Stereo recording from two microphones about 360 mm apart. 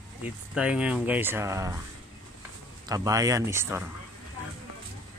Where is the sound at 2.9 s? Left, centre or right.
Centre.